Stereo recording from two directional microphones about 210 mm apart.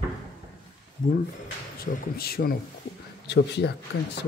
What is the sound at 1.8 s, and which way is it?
Speech, 45° left (ahead or behind).